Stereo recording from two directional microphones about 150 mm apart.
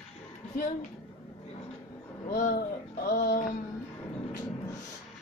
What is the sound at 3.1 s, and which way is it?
Music, 70° left (ahead or behind).